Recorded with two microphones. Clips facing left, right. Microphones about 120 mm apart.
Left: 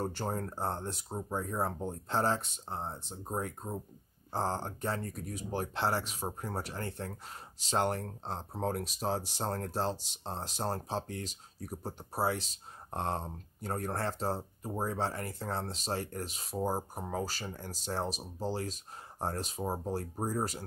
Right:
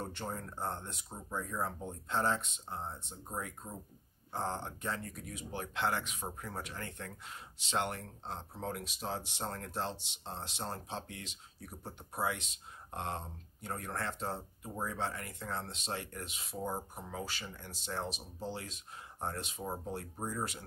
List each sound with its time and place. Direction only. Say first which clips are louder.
0.0 s speech: left 6 dB; 35° left (ahead or behind)